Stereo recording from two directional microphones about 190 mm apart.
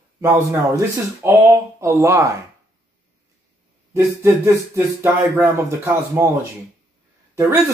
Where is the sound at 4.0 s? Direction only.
15° right (ahead or behind).